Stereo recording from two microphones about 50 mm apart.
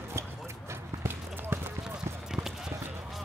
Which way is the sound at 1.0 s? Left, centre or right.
Right.